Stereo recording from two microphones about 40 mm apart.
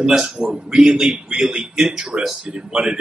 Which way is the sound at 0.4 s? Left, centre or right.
Right.